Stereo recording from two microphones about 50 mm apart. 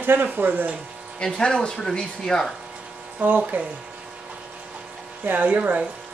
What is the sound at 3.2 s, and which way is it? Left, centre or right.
Speech, right.